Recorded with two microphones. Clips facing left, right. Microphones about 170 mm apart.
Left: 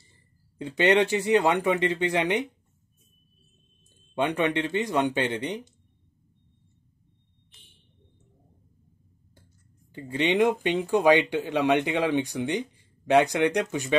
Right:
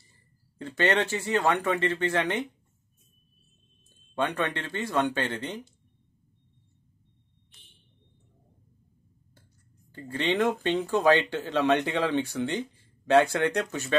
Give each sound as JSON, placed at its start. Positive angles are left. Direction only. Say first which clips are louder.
{"t": 0.6, "sound": "speech", "louder": "left 4 dB", "side_deg": 15}
{"t": 4.1, "sound": "speech", "louder": "left 4 dB", "side_deg": 15}
{"t": 9.9, "sound": "speech", "louder": "left 3 dB", "side_deg": 15}